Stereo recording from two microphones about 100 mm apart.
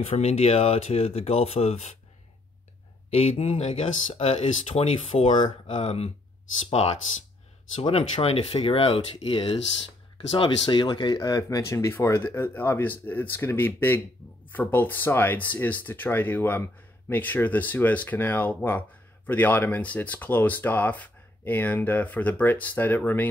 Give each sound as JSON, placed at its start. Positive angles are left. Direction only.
{"t": 0.1, "sound": "speech", "side_deg": 90}
{"t": 3.1, "sound": "speech", "side_deg": 90}
{"t": 6.7, "sound": "speech", "side_deg": 90}
{"t": 7.8, "sound": "speech", "side_deg": 75}
{"t": 10.3, "sound": "speech", "side_deg": 55}
{"t": 11.1, "sound": "speech", "side_deg": 35}